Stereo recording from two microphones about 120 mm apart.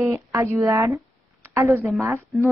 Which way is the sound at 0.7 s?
25° right (ahead or behind).